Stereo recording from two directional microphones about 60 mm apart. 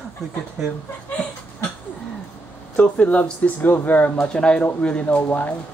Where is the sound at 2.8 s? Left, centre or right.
Left.